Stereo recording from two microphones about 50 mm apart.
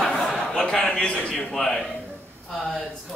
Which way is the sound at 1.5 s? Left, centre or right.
Centre.